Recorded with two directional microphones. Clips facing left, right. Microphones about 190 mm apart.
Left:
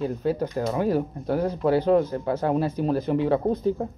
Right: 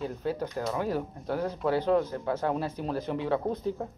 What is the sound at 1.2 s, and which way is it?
Speech, 35° left (ahead or behind).